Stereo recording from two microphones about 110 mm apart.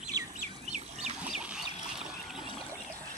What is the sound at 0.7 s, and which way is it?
Bird, 90° right.